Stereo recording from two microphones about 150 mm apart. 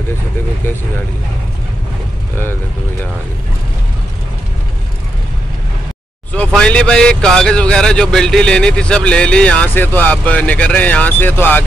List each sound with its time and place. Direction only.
6.3 s speech: 5° left (ahead or behind)